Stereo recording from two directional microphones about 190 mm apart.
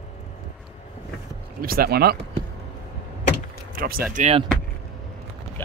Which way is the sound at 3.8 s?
50° right (ahead or behind).